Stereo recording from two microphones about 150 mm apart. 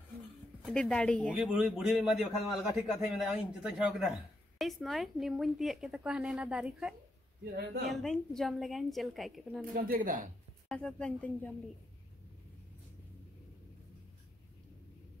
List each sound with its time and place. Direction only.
0.7 s a woman's voice: 5° left (ahead or behind)
1.3 s a man's voice: 5° right (ahead or behind)
9.8 s speech: 80° right
10.7 s a man's voice: 5° left (ahead or behind)